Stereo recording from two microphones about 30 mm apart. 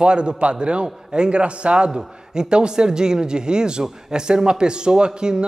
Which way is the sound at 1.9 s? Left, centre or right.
Right.